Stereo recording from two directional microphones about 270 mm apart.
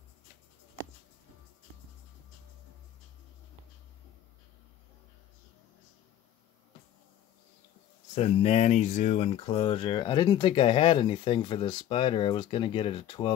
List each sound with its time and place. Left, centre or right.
8.1 s speech: left